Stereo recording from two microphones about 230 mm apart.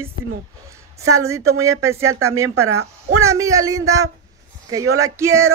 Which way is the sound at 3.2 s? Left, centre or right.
Centre.